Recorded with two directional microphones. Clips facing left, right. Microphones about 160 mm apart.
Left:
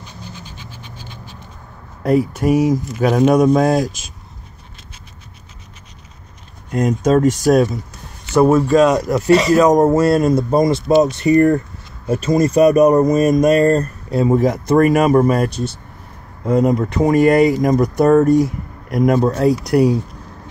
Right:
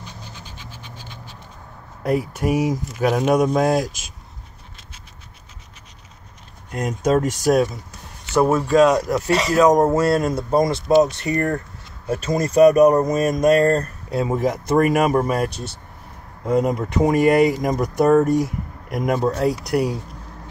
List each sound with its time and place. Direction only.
2.0 s speech: 5° right (ahead or behind)
6.7 s speech: 5° right (ahead or behind); by 11.6 s 15° left (ahead or behind)
12.1 s speech: centre (ahead or behind)